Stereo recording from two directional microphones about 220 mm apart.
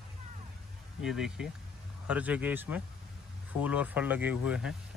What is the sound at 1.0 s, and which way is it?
Speech, centre (ahead or behind).